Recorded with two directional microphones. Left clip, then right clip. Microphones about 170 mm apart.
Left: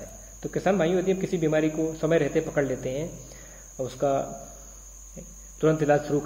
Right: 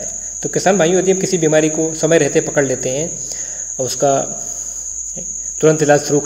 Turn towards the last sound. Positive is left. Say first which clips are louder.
# right 10 dB
turn(degrees=-25)  # may be behind; listen again after turning